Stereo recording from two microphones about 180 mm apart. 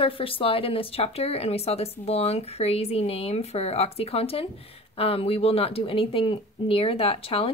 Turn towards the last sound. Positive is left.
turn(degrees=30)  # may be behind; listen again after turning